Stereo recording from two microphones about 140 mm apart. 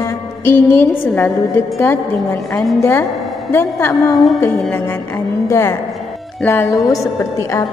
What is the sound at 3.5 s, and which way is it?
Speech, 15° left (ahead or behind).